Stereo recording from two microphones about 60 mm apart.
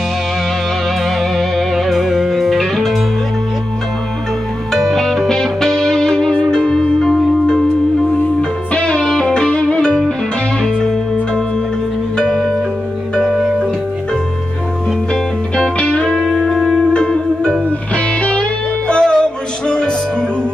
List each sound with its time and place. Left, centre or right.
1.9 s music: centre
4.7 s music: centre
13.2 s music: centre
15.5 s music: centre